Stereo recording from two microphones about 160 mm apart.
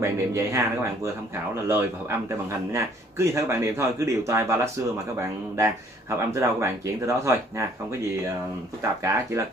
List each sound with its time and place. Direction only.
0.0 s speech: 20° right (ahead or behind)